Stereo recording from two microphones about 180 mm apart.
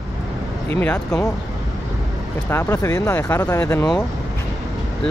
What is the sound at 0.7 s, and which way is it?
Speech, 10° left (ahead or behind).